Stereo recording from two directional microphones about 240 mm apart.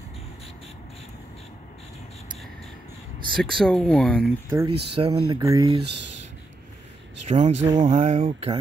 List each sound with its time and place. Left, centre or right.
3.3 s speech: centre
4.5 s speech: centre
7.2 s speech: right